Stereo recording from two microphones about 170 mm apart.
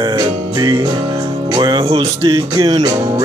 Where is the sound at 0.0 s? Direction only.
25° right (ahead or behind).